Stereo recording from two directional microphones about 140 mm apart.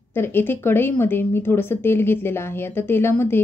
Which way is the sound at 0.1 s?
15° left (ahead or behind).